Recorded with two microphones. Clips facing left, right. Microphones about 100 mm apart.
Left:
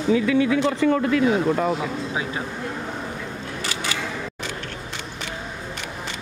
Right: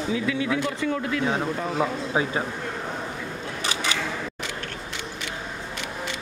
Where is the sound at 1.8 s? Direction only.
30° right (ahead or behind).